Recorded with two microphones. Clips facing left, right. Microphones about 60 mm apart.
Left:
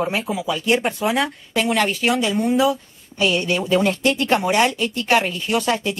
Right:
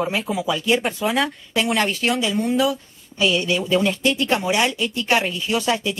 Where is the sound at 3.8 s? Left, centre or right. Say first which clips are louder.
Left 1 dB; left.